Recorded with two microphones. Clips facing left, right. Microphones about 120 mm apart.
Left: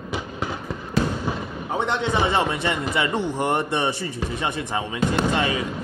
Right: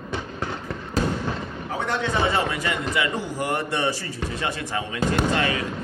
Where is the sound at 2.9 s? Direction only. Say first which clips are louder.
Left 2 dB; 30° left (ahead or behind).